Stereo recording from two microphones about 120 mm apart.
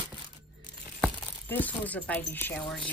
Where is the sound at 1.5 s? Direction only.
15° left (ahead or behind).